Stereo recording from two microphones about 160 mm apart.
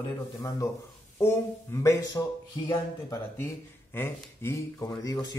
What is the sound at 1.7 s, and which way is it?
Speech, 15° left (ahead or behind).